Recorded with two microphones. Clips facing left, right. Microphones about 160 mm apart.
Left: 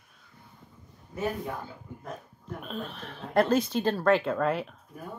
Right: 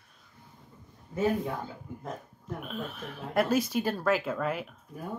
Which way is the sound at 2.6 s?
5° right (ahead or behind).